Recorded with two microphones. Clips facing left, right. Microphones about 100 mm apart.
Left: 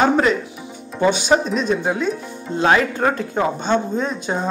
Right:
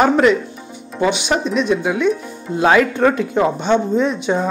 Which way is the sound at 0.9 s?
5° right (ahead or behind).